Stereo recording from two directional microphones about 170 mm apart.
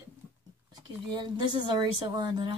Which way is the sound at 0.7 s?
25° right (ahead or behind).